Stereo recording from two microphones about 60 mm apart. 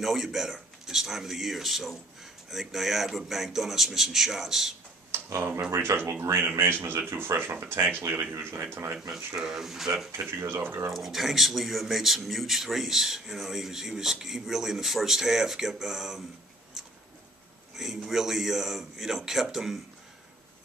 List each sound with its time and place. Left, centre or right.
0.0 s a man's voice: centre
5.4 s speech: right
5.8 s speech: right
9.1 s speech: centre
10.1 s speech: right
10.9 s a man's voice: centre
17.7 s a man's voice: centre